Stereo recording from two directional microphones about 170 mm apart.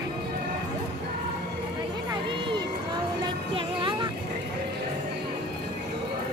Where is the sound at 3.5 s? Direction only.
30° right (ahead or behind).